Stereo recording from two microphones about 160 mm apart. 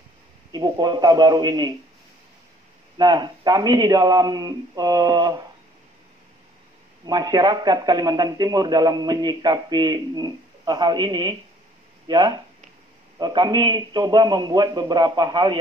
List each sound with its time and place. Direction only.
0.5 s a man's voice: 25° right (ahead or behind)
3.0 s a man's voice: 25° right (ahead or behind)
7.1 s a man's voice: 25° right (ahead or behind)